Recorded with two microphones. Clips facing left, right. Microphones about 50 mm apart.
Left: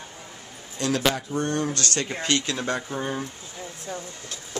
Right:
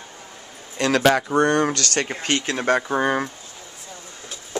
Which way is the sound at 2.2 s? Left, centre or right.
Right.